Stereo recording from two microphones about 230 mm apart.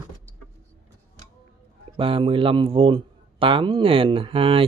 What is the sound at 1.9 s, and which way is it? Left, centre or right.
Speech, right.